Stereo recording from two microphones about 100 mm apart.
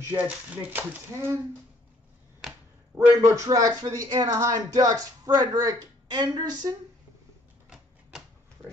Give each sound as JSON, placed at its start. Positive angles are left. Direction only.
{"t": 0.1, "sound": "speech", "side_deg": -15}
{"t": 3.2, "sound": "speech", "side_deg": -35}